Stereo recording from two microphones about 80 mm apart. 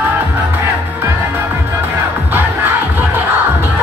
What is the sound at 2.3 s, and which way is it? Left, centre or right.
Music, right.